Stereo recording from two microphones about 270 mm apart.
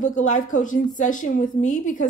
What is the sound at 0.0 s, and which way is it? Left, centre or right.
A woman's voice, left.